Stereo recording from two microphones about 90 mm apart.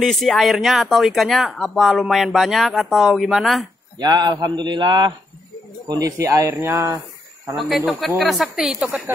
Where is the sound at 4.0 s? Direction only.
50° right (ahead or behind).